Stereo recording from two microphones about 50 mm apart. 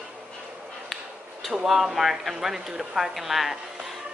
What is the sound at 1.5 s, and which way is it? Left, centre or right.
Speech, centre.